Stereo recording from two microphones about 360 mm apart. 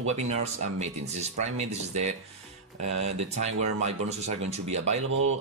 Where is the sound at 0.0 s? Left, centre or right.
Centre.